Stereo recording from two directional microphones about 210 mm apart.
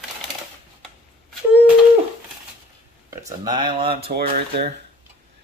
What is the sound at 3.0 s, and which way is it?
Speech, 15° right (ahead or behind).